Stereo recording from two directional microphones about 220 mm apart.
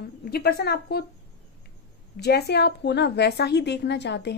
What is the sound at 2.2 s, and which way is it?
A woman's voice, 50° left (ahead or behind).